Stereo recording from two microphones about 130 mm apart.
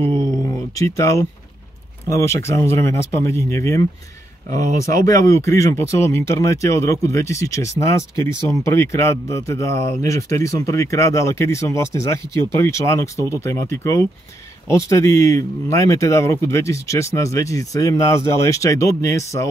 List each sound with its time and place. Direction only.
0.4 s a sound: 25° left (ahead or behind)
2.0 s a man's voice: 25° left (ahead or behind)
4.5 s speech: 90° right
4.9 s a man's voice: 25° left (ahead or behind)